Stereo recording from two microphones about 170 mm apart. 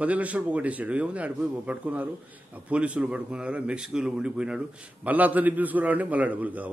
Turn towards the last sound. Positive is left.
turn(degrees=-10)  # may be behind; listen again after turning